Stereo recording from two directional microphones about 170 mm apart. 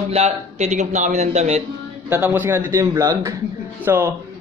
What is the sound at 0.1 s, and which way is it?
Speech, 40° right (ahead or behind).